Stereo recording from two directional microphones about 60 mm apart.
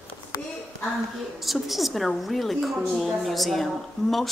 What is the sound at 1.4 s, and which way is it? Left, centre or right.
A woman's voice, centre.